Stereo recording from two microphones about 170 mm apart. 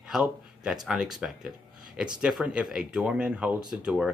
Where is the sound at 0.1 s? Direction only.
5° right (ahead or behind).